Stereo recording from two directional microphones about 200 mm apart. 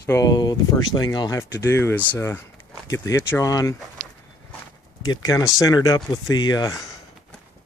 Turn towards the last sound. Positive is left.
turn(degrees=20)  # may be behind; listen again after turning